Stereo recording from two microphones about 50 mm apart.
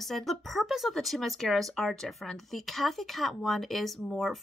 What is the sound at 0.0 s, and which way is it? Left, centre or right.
Speech, centre.